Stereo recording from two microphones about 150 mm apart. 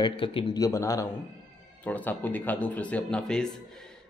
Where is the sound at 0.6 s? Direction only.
20° left (ahead or behind).